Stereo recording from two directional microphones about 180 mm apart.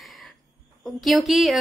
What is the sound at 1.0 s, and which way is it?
Speech, centre (ahead or behind).